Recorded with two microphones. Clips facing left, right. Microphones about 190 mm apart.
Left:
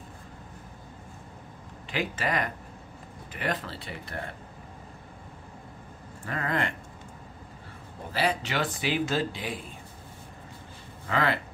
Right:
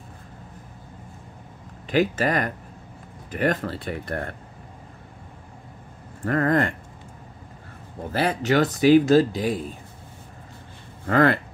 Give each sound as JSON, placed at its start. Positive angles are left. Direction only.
{"t": 1.9, "sound": "speech", "side_deg": -40}
{"t": 6.2, "sound": "speech", "side_deg": -50}
{"t": 8.1, "sound": "speech", "side_deg": -50}
{"t": 11.1, "sound": "speech", "side_deg": -50}